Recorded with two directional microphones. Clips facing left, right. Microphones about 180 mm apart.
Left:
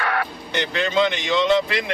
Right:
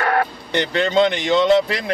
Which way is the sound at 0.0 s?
40° right (ahead or behind).